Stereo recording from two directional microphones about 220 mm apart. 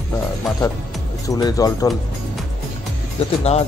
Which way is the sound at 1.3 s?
15° left (ahead or behind).